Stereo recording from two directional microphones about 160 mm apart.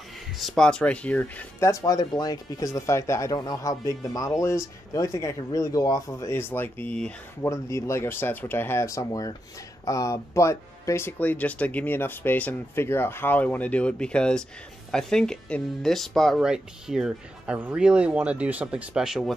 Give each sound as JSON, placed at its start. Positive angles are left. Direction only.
{"t": 0.4, "sound": "speech", "side_deg": 0}
{"t": 7.4, "sound": "speech", "side_deg": 20}